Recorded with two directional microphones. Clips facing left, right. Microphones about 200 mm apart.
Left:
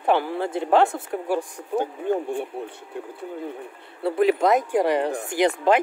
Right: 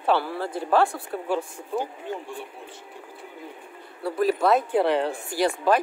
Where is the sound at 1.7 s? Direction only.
55° left (ahead or behind).